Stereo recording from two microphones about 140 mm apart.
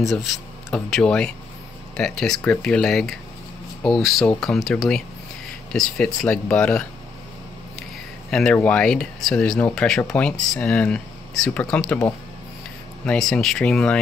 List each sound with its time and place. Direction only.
0.0 s speech: centre (ahead or behind)
8.3 s speech: 5° left (ahead or behind)